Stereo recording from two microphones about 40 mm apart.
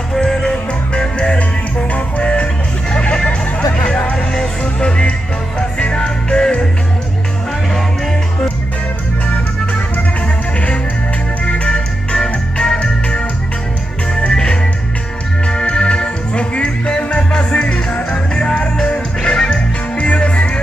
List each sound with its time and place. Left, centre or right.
0.1 s music: centre
1.8 s music: left
4.3 s music: centre
9.9 s music: left
11.4 s organ: left
12.7 s music: left
14.3 s music: left